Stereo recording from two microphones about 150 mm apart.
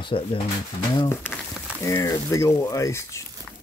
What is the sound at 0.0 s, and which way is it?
Speech, 35° left (ahead or behind).